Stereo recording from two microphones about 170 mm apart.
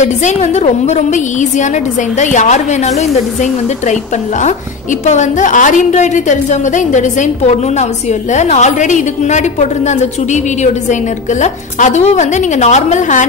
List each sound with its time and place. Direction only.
0.0 s a woman's voice: 45° left (ahead or behind)
5.0 s a woman's voice: 45° left (ahead or behind)